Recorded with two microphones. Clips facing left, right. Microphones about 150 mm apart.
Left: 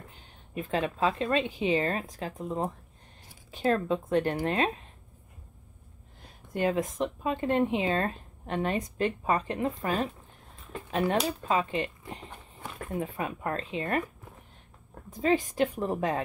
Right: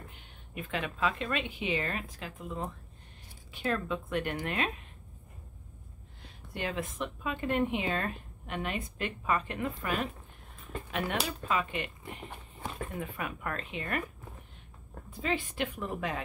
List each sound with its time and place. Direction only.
0.1 s a woman's voice: 35° left (ahead or behind)
6.2 s a woman's voice: 40° left (ahead or behind)
12.3 s horse: 10° right (ahead or behind)
12.9 s speech: 30° left (ahead or behind)
15.0 s a woman's voice: 40° left (ahead or behind)